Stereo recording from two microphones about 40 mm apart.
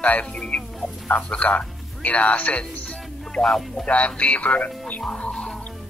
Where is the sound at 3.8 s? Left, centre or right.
Left.